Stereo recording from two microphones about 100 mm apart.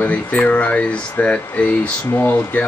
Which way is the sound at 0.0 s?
15° left (ahead or behind).